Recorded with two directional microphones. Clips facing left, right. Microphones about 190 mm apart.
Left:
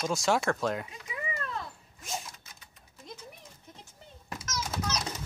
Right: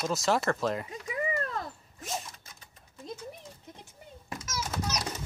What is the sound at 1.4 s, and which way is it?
Cat, 40° right (ahead or behind).